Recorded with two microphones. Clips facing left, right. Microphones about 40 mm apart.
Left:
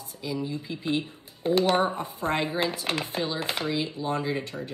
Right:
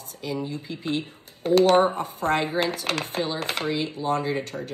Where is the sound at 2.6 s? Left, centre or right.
Right.